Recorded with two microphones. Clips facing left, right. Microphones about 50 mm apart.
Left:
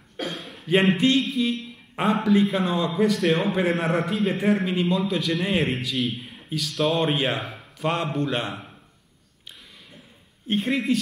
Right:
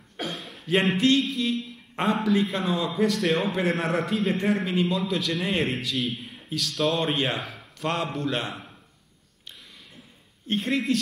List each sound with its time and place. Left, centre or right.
0.2 s a man's voice: centre
10.4 s speech: centre